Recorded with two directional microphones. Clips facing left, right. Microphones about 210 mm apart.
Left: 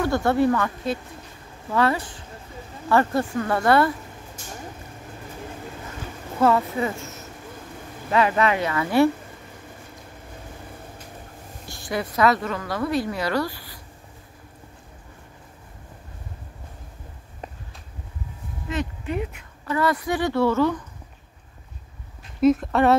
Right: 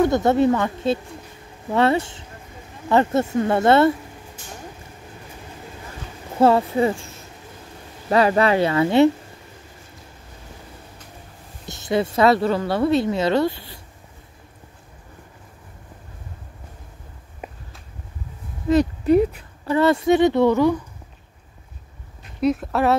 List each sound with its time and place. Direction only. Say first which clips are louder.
0.0 s speech: right 4 dB; 20° right (ahead or behind)
6.4 s speech: right 4 dB; 30° right (ahead or behind)
11.6 s speech: right 7 dB; 20° right (ahead or behind)
17.4 s a sound: right 2 dB; 10° right (ahead or behind)
18.7 s speech: right 12 dB; 35° right (ahead or behind); by 20.8 s 15° right (ahead or behind)
22.4 s speech: left 2 dB; centre (ahead or behind)